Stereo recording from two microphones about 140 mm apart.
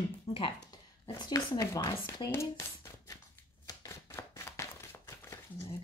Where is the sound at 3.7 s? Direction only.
20° left (ahead or behind).